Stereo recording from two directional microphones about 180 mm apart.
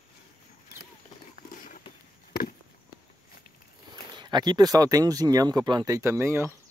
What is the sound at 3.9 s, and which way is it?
Speech, 25° right (ahead or behind).